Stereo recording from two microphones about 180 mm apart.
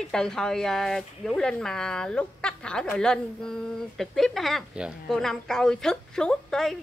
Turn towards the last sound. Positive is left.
turn(degrees=0)  # may be behind; listen again after turning